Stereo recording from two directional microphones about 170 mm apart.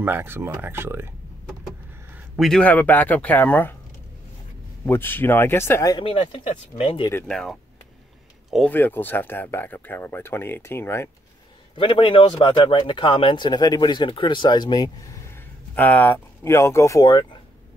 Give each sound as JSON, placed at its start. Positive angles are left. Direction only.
{"t": 0.0, "sound": "speech", "side_deg": -15}
{"t": 2.3, "sound": "speech", "side_deg": 0}
{"t": 4.8, "sound": "speech", "side_deg": 10}
{"t": 5.9, "sound": "speech", "side_deg": 30}
{"t": 7.2, "sound": "speech", "side_deg": 5}
{"t": 8.7, "sound": "speech", "side_deg": 10}
{"t": 11.7, "sound": "speech", "side_deg": 30}
{"t": 15.7, "sound": "speech", "side_deg": 10}
{"t": 17.1, "sound": "speech", "side_deg": 30}